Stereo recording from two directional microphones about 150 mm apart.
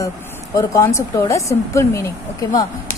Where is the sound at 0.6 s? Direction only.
20° left (ahead or behind).